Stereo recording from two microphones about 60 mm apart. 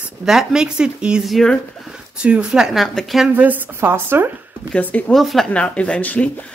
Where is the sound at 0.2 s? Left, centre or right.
Centre.